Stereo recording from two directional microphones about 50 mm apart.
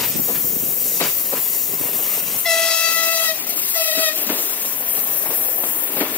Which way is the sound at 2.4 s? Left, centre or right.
Centre.